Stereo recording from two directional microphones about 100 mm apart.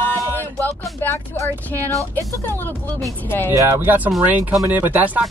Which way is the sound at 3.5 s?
25° right (ahead or behind).